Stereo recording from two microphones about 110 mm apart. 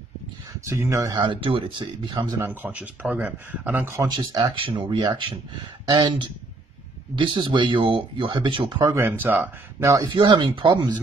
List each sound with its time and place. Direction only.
0.7 s speech: 25° right (ahead or behind)
1.1 s speech: 45° right (ahead or behind)
2.3 s speech: 20° right (ahead or behind)
4.0 s speech: 40° right (ahead or behind)
9.2 s speech: 20° right (ahead or behind)
9.8 s speech: 35° right (ahead or behind)
10.1 s speech: 45° right (ahead or behind)